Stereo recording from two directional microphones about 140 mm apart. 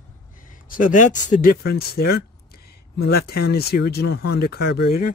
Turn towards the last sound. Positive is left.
turn(degrees=90)